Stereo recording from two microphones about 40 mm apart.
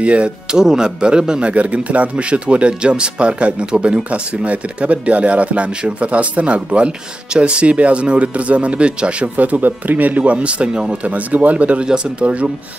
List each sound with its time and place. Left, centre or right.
0.0 s speech: right
0.6 s speech: centre
1.5 s speech: right
9.4 s speech: right
11.1 s speech: right
11.8 s speech: right